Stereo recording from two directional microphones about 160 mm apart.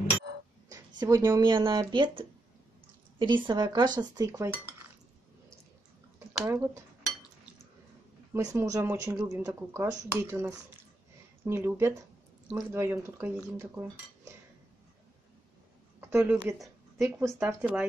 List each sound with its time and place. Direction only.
0.7 s speech: 20° right (ahead or behind)
3.2 s cutlery: 30° right (ahead or behind)
6.4 s cutlery: 20° right (ahead or behind)
8.3 s cutlery: 20° right (ahead or behind)
9.3 s speech: 20° right (ahead or behind)
16.1 s speech: 15° right (ahead or behind)